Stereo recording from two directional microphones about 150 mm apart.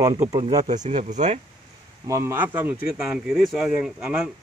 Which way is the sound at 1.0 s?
50° right (ahead or behind).